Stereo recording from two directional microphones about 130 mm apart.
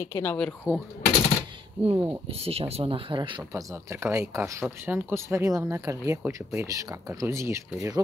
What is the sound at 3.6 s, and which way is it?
Speech, 20° right (ahead or behind).